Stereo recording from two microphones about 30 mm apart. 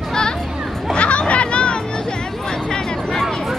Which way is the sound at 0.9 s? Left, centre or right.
Left.